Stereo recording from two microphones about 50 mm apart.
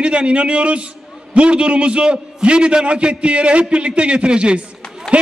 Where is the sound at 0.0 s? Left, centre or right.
Right.